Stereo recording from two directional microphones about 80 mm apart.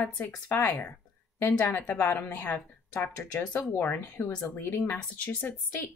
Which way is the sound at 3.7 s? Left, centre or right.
Left.